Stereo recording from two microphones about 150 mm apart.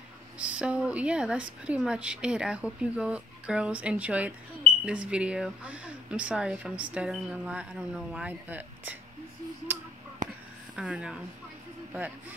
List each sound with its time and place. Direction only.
0.4 s speech: 10° right (ahead or behind)
10.2 s a sound: 55° right (ahead or behind)
10.8 s speech: 5° right (ahead or behind)